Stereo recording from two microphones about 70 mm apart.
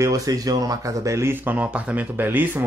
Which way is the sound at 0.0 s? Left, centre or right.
Right.